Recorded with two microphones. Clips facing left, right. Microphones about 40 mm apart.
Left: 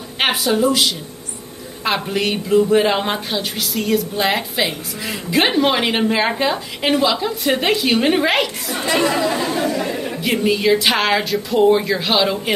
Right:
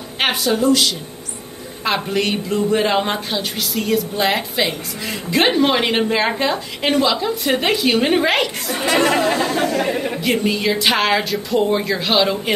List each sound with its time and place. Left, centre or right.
0.2 s speech: centre
8.8 s speech: right
10.2 s speech: centre